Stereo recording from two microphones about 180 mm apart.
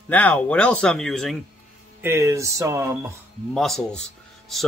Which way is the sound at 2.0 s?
15° right (ahead or behind).